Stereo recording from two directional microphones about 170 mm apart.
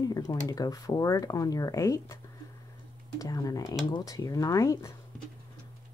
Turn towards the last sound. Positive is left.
turn(degrees=20)  # may be behind; listen again after turning